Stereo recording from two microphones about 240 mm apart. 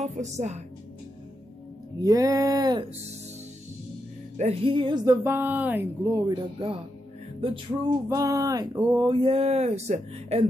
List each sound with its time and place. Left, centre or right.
0.0 s a woman's voice: right
2.0 s speech: centre
4.4 s speech: right
8.1 s speech: centre